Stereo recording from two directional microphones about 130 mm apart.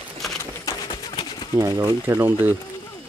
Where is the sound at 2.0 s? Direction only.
20° right (ahead or behind).